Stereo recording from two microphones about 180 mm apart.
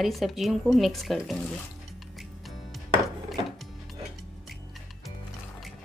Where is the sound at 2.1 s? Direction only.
Centre (ahead or behind).